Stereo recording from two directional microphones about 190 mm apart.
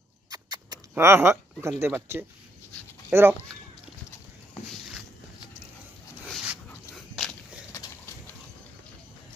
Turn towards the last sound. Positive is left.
turn(degrees=0)  # may be behind; listen again after turning